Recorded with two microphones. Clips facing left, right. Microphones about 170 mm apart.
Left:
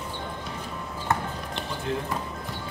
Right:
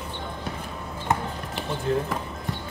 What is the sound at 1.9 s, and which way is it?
Music, 40° right (ahead or behind).